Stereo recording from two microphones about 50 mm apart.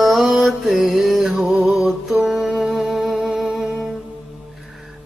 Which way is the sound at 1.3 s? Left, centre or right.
Centre.